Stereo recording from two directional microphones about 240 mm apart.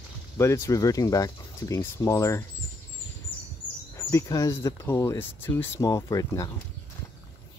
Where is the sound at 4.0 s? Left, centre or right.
Centre.